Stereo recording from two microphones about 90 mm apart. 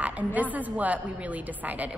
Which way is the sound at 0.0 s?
15° right (ahead or behind).